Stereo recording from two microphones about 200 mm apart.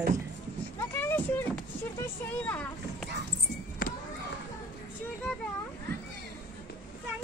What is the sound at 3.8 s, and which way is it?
Children playing, 45° left (ahead or behind).